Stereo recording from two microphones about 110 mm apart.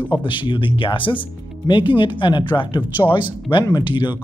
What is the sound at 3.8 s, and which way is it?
Speech, 45° left (ahead or behind).